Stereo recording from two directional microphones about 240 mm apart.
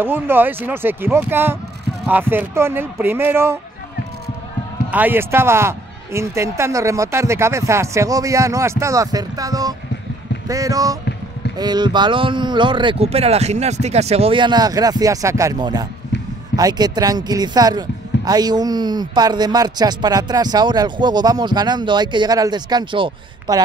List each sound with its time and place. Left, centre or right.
0.0 s speech: centre
4.9 s speech: centre